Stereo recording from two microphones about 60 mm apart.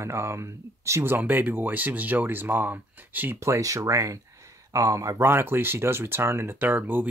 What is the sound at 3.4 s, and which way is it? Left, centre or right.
Speech, right.